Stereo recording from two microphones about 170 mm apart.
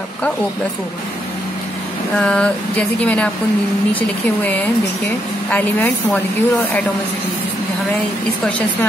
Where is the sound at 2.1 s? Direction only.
5° left (ahead or behind).